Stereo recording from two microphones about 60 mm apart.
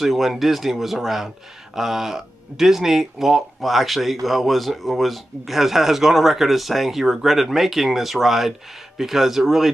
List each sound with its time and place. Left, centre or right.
0.0 s speech: centre